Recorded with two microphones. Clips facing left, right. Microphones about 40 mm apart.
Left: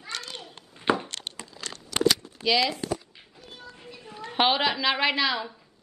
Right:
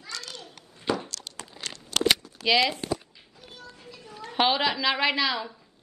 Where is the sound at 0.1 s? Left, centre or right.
Left.